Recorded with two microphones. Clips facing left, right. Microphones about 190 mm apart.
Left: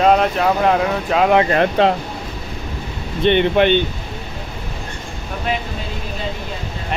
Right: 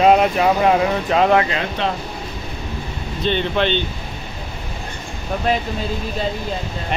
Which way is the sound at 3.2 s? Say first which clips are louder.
Left 6 dB; 60° left (ahead or behind).